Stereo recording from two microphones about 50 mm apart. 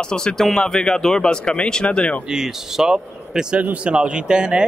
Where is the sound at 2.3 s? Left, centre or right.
Centre.